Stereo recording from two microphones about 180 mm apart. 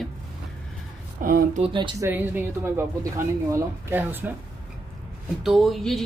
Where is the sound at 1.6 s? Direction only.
25° right (ahead or behind).